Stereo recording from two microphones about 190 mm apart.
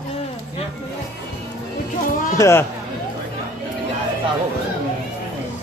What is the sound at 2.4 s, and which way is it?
Speech, 15° left (ahead or behind).